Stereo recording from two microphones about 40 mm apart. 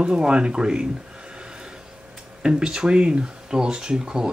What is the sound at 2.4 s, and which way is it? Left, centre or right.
Speech, centre.